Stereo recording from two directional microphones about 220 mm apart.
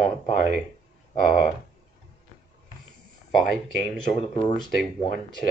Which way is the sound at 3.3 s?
5° right (ahead or behind).